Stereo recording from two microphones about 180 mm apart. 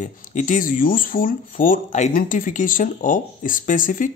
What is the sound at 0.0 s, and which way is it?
Speech, 45° left (ahead or behind).